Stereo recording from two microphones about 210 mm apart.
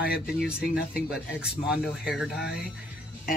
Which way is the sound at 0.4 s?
5° right (ahead or behind).